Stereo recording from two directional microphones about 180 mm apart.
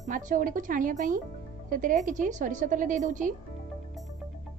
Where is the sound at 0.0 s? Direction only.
45° right (ahead or behind).